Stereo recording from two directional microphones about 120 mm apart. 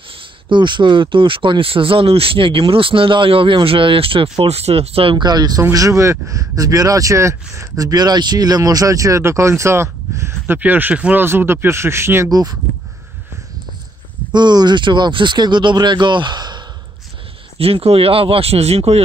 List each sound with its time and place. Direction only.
0.5 s speech: 40° right (ahead or behind); by 12.3 s 20° right (ahead or behind)
12.3 s speech: 35° right (ahead or behind)
14.3 s speech: 35° right (ahead or behind)
17.6 s speech: 55° right (ahead or behind)